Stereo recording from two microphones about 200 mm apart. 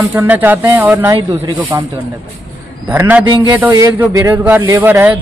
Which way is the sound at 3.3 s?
20° right (ahead or behind).